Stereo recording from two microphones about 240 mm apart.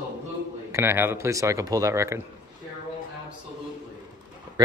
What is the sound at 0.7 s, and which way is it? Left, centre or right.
Speech, centre.